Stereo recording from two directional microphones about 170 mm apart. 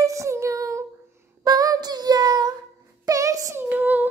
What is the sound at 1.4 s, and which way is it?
Child singing, 20° right (ahead or behind).